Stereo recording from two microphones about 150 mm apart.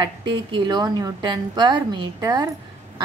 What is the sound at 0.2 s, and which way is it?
A woman's voice, 30° right (ahead or behind).